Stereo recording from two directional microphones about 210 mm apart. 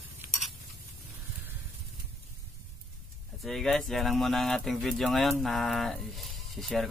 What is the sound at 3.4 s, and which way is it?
Speech, centre (ahead or behind).